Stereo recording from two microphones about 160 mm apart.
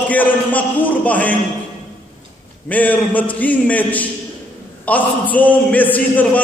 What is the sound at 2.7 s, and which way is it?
A man's voice, 10° left (ahead or behind).